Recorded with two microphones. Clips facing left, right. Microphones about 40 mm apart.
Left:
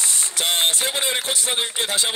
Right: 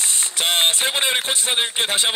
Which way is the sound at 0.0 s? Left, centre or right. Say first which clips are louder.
Right 2 dB; right.